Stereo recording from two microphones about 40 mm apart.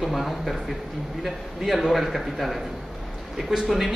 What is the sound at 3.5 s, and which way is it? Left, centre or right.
Speech, centre.